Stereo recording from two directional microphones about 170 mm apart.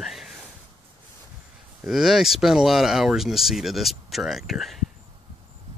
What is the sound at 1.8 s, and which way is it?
Speech, centre (ahead or behind).